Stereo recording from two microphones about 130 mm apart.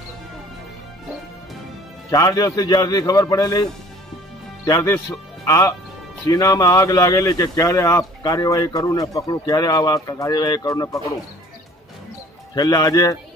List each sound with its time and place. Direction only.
2.0 s speech: 30° left (ahead or behind)
4.6 s speech: 25° left (ahead or behind)
12.5 s a man's voice: 30° left (ahead or behind)